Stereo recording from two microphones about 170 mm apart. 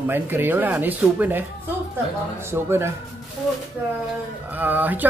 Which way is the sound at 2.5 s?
15° right (ahead or behind).